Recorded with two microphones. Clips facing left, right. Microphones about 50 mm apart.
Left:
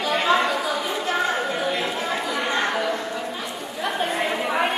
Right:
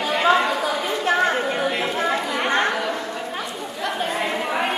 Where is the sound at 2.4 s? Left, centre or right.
Right.